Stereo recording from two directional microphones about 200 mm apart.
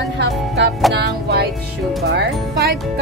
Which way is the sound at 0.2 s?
60° right (ahead or behind).